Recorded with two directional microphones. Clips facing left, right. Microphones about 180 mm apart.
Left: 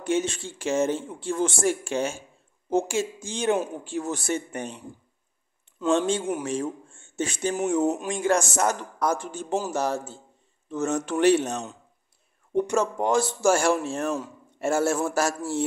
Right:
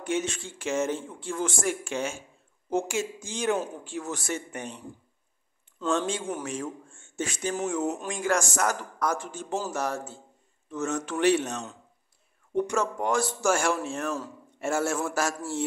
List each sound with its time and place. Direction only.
0.0 s speech: 30° left (ahead or behind)
5.9 s a man's voice: 30° left (ahead or behind)